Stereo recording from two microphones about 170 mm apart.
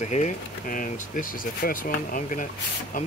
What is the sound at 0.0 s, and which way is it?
Speech, 45° left (ahead or behind).